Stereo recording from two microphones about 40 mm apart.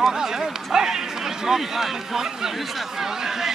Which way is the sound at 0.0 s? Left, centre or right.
Centre.